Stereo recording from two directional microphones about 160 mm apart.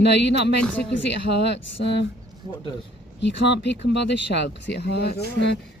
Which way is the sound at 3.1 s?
90° left.